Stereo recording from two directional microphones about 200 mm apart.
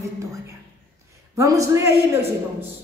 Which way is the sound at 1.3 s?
15° right (ahead or behind).